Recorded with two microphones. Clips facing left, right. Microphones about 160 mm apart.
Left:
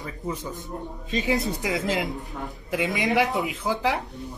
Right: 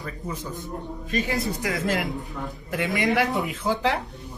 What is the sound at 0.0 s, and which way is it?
Speech, 20° left (ahead or behind).